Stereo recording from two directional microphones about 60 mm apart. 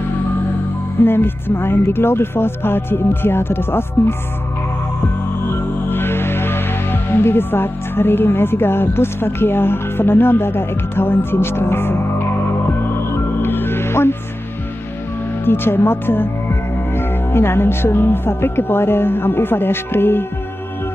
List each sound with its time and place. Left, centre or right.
0.9 s speech: left
5.5 s music: left
15.4 s speech: left